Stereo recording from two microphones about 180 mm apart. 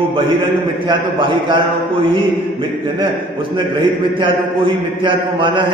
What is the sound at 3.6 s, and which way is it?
A man's voice, 25° right (ahead or behind).